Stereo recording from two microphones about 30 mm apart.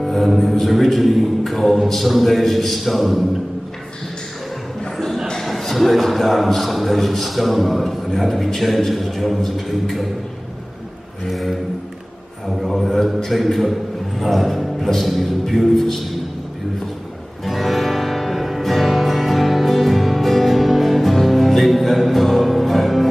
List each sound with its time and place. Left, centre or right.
0.0 s a man's voice: centre
4.9 s a sound: centre
5.4 s a man's voice: centre
11.2 s a man's voice: centre
17.5 s music: centre